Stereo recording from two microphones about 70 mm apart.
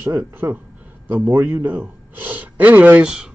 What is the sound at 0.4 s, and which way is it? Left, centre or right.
A man's voice, right.